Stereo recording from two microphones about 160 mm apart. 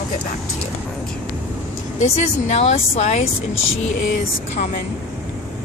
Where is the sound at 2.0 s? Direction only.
45° left (ahead or behind).